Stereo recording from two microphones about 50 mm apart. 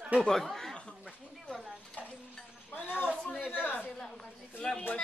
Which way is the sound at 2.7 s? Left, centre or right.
Left.